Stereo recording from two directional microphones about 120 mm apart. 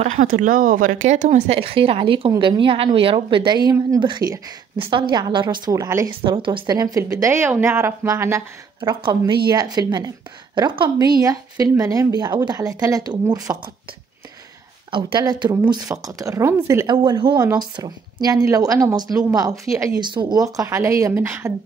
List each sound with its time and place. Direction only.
0.0 s speech: 90° right
1.6 s speech: 50° right (ahead or behind); by 6.0 s 30° right (ahead or behind)
6.2 s speech: 45° right (ahead or behind)
6.7 s speech: 30° right (ahead or behind)
8.8 s speech: 40° right (ahead or behind)
14.9 s speech: 45° right (ahead or behind); by 16.8 s 25° right (ahead or behind)
16.8 s speech: 40° right (ahead or behind)
20.0 s speech: 40° right (ahead or behind); by 21.5 s 20° right (ahead or behind)